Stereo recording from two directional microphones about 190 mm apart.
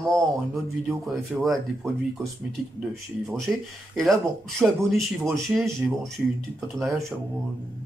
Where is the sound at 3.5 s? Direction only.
5° right (ahead or behind).